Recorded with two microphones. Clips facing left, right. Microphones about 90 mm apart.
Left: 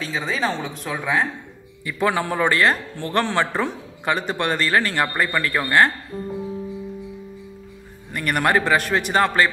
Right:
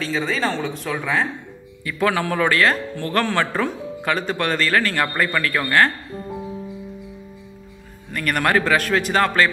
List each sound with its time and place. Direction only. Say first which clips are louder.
0.0 s a man's voice: right 2 dB; 10° left (ahead or behind)
8.1 s speech: even; 15° left (ahead or behind)
8.8 s speech: right 2 dB; 5° left (ahead or behind)
9.1 s speech: even; 20° left (ahead or behind)